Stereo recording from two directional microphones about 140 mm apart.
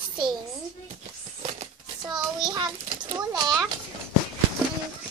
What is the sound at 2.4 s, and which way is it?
Children playing, 35° right (ahead or behind).